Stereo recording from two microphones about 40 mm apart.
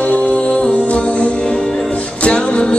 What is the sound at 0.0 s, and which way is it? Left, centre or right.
Music, left.